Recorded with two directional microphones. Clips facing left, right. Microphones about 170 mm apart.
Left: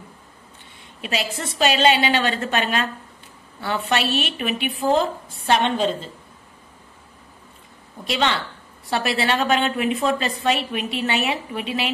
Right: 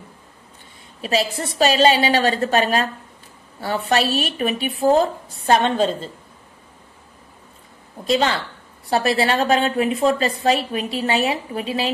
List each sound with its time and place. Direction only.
1.0 s a woman's voice: 35° right (ahead or behind)
8.9 s a woman's voice: 35° right (ahead or behind)